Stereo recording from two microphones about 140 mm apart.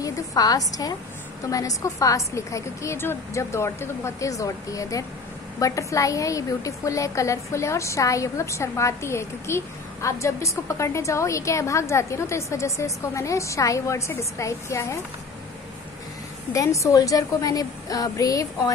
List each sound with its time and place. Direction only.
0.0 s a woman's voice: 25° left (ahead or behind)
16.5 s a woman's voice: 20° left (ahead or behind)